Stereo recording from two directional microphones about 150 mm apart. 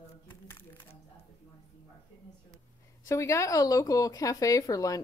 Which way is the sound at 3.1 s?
20° left (ahead or behind).